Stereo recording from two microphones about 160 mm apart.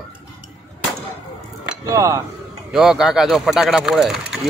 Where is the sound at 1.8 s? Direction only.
20° right (ahead or behind).